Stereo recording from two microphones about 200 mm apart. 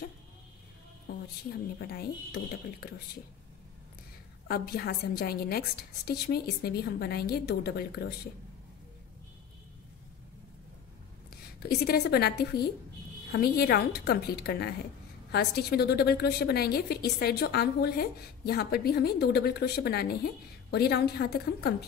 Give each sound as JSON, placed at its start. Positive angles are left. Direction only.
{"t": 1.1, "sound": "a woman's voice", "side_deg": 50}
{"t": 4.5, "sound": "a woman's voice", "side_deg": 50}
{"t": 11.8, "sound": "a woman's voice", "side_deg": 50}